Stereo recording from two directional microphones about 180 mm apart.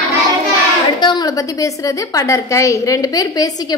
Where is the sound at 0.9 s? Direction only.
25° left (ahead or behind).